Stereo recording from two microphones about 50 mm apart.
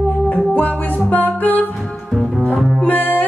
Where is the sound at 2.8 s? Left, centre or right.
Left.